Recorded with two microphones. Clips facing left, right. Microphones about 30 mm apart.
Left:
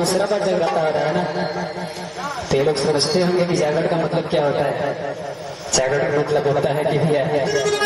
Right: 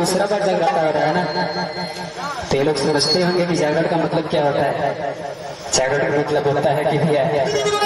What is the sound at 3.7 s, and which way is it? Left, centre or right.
Speech, right.